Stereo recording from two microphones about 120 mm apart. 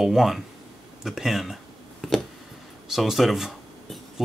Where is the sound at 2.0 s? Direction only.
Centre (ahead or behind).